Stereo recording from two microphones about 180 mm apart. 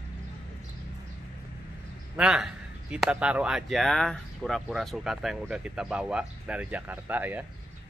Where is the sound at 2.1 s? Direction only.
5° right (ahead or behind).